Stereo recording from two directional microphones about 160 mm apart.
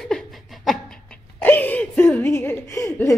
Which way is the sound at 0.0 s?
Centre (ahead or behind).